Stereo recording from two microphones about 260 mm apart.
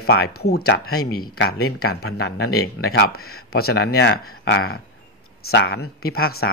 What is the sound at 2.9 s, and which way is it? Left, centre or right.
Speech, left.